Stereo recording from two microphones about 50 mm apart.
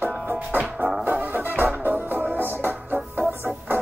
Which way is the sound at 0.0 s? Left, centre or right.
Right.